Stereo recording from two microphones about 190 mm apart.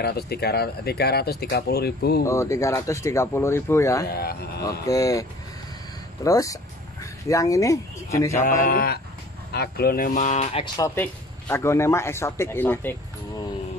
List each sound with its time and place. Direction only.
0.0 s speech: 55° left (ahead or behind)
2.2 s a man's voice: 15° left (ahead or behind)
4.1 s speech: 55° left (ahead or behind)
4.6 s a man's voice: 15° left (ahead or behind)
6.2 s speech: 15° left (ahead or behind)
8.4 s speech: 45° left (ahead or behind)
10.2 s speech: 35° left (ahead or behind)
11.0 s a man's voice: 15° left (ahead or behind)